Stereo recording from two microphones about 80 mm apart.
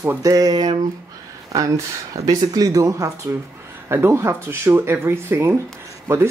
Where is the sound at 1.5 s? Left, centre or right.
Right.